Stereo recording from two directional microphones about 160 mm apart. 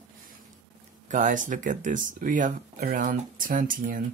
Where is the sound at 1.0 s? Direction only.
50° right (ahead or behind).